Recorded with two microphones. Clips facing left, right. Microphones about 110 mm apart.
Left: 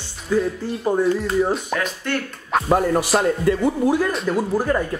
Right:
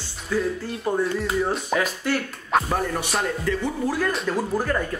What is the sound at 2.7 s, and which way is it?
Speech, 30° left (ahead or behind).